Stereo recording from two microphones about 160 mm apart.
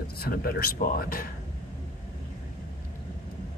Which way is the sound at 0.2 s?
70° left (ahead or behind).